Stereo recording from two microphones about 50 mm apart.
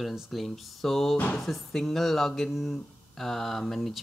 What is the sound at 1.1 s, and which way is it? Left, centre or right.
Speech, left.